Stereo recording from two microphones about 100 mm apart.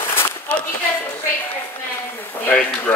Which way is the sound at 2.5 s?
15° left (ahead or behind).